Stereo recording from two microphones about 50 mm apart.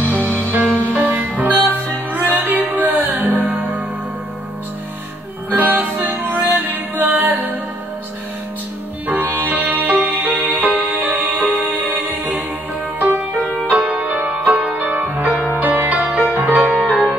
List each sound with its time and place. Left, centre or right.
0.0 s music: right
5.5 s music: right
9.0 s music: right
13.7 s music: right